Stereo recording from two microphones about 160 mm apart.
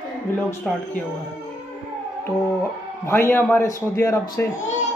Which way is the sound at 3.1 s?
15° left (ahead or behind).